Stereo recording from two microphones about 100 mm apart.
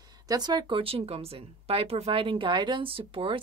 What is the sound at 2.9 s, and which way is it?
Speech, 65° right (ahead or behind).